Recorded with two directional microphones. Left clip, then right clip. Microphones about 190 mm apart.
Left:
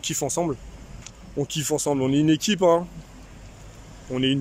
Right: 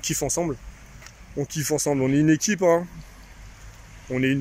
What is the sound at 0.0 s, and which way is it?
Speech, centre (ahead or behind).